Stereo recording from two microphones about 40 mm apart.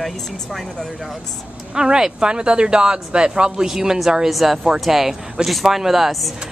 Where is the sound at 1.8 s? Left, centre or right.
Centre.